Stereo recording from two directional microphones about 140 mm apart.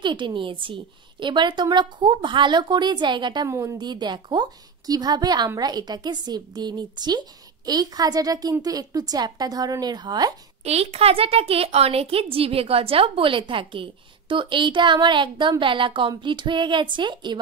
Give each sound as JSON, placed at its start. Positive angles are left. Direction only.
{"t": 0.0, "sound": "a woman's voice", "side_deg": -35}
{"t": 3.4, "sound": "a woman's voice", "side_deg": -20}
{"t": 10.6, "sound": "a woman's voice", "side_deg": -50}